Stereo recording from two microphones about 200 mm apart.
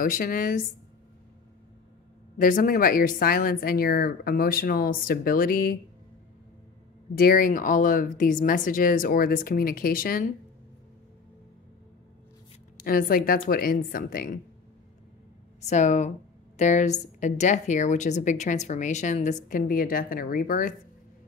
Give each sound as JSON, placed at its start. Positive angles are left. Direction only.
{"t": 0.0, "sound": "speech", "side_deg": 45}
{"t": 2.3, "sound": "speech", "side_deg": 40}
{"t": 7.2, "sound": "speech", "side_deg": 45}
{"t": 12.7, "sound": "speech", "side_deg": 45}
{"t": 15.6, "sound": "a woman's voice", "side_deg": 35}